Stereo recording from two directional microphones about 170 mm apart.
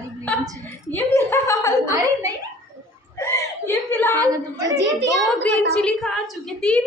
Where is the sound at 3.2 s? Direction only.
15° left (ahead or behind).